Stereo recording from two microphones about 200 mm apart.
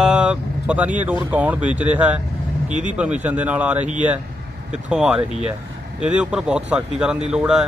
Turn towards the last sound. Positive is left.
turn(degrees=-5)  # may be behind; listen again after turning